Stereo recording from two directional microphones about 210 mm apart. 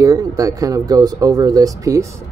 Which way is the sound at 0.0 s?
15° right (ahead or behind).